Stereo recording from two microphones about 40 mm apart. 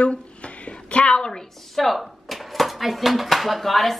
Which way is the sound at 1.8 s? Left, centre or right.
Centre.